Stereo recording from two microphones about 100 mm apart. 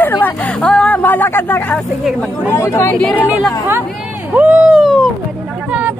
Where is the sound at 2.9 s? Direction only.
10° left (ahead or behind).